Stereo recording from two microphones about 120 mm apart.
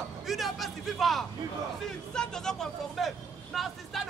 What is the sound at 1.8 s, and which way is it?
Vehicle, 5° left (ahead or behind).